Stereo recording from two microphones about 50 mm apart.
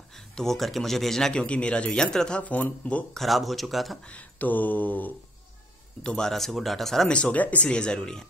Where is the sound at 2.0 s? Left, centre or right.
Centre.